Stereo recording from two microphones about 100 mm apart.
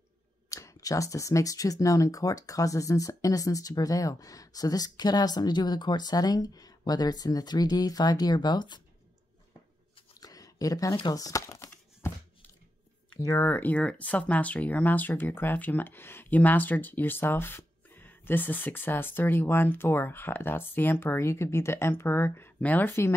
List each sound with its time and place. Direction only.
0.5 s speech: 35° left (ahead or behind)
10.2 s a sound: 35° left (ahead or behind)
11.1 s crumpling: 35° left (ahead or behind)
13.2 s speech: 25° left (ahead or behind)